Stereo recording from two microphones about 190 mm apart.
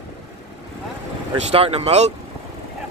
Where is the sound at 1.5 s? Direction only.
30° right (ahead or behind).